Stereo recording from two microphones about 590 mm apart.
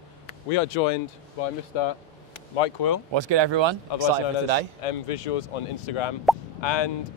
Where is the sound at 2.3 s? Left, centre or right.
Left.